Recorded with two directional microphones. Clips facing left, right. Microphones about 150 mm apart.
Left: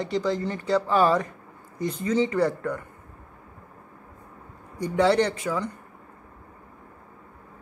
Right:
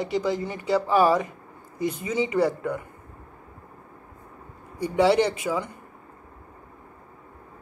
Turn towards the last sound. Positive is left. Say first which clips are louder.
# right 1 dB
turn(degrees=-10)  # may be behind; listen again after turning